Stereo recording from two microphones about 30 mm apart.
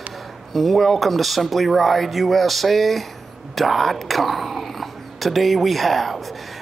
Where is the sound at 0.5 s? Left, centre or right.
Centre.